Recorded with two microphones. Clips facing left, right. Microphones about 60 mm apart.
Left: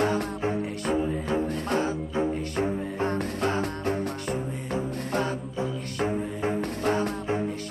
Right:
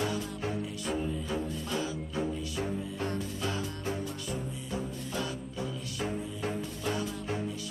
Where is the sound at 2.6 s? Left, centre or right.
Left.